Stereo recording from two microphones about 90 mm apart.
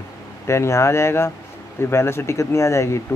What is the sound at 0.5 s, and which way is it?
Speech, 30° left (ahead or behind).